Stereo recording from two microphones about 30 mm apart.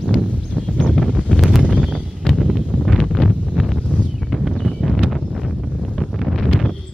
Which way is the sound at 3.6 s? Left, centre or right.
Centre.